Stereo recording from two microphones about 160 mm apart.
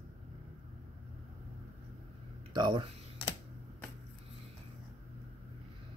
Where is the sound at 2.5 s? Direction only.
30° right (ahead or behind).